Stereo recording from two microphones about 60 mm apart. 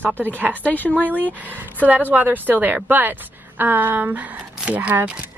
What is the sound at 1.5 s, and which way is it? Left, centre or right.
A woman's voice, right.